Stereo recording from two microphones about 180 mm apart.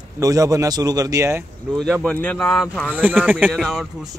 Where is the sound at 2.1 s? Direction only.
15° left (ahead or behind).